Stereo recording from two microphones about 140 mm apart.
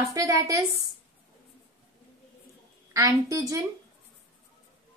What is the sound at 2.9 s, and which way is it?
Speech, 25° right (ahead or behind).